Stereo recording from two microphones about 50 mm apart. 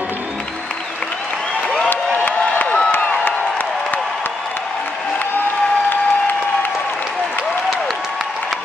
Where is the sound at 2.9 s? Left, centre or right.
Left.